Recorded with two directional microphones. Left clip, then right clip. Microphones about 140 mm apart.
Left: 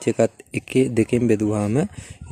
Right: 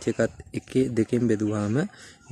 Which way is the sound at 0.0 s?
25° left (ahead or behind).